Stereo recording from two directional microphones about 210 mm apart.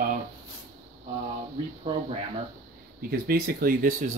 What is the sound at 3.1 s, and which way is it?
Speech, 45° right (ahead or behind).